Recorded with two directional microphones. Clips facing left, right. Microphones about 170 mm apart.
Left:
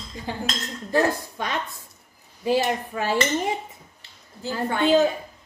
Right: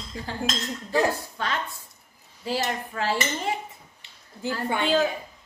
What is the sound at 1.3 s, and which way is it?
A woman's voice, 15° left (ahead or behind).